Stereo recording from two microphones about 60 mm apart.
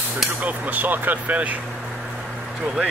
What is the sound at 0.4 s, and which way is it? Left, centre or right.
Speech, right.